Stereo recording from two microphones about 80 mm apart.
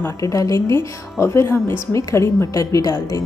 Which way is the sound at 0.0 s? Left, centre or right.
Left.